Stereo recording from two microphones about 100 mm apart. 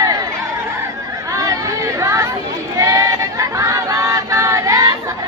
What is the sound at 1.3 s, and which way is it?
Chatter, 35° right (ahead or behind).